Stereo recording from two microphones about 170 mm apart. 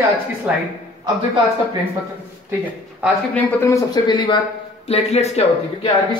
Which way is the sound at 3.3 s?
15° left (ahead or behind).